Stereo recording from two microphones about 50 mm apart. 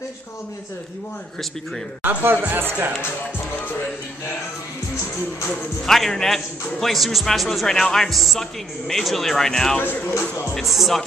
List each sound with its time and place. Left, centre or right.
2.0 s speech: right
5.9 s speech: centre
10.5 s speech: centre